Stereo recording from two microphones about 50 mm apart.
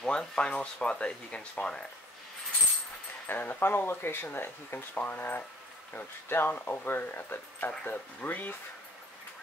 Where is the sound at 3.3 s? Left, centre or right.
Left.